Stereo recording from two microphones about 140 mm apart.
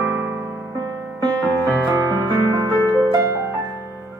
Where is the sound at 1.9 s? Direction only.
25° right (ahead or behind).